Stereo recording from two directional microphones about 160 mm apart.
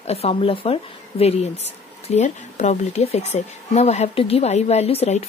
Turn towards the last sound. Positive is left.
turn(degrees=40)  # may be behind; listen again after turning